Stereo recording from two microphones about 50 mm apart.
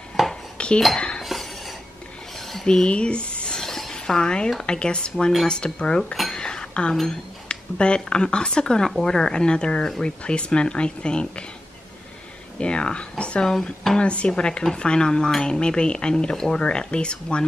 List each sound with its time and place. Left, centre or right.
0.2 s dishes: centre
0.6 s dishes: left
1.2 s cutlery: centre
2.3 s a sound: centre
2.7 s speech: centre
3.6 s a sound: centre
3.9 s speech: centre
6.3 s a sound: centre
7.1 s speech: centre
12.5 s speech: centre